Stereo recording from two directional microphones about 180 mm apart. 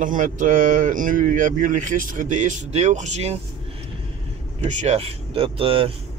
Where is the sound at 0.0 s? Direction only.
45° right (ahead or behind).